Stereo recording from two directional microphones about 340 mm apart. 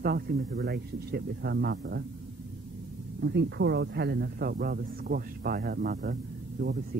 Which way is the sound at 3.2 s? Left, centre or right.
Right.